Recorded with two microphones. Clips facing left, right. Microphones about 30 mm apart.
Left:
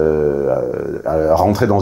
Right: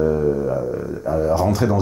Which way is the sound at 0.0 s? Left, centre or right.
Centre.